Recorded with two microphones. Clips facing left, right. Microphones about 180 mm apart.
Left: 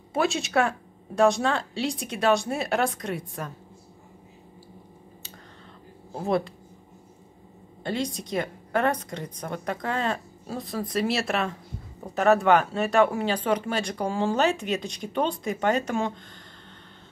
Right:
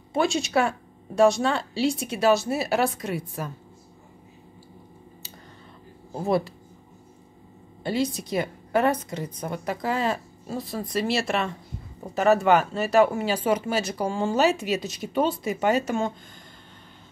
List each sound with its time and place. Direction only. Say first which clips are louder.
0.1 s speech: right 1 dB; centre (ahead or behind)
6.2 s speech: right 1 dB; 5° right (ahead or behind)
7.8 s speech: right 3 dB; 5° right (ahead or behind)